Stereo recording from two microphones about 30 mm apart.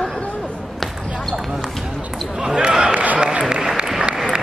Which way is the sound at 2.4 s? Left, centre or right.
Right.